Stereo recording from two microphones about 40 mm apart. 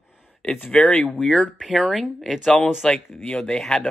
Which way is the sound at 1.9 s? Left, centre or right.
Centre.